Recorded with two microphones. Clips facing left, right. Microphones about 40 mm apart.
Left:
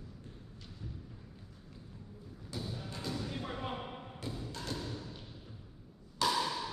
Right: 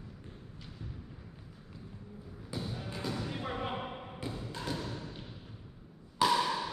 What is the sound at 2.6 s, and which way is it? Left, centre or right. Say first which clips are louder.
Music: right 3 dB; right.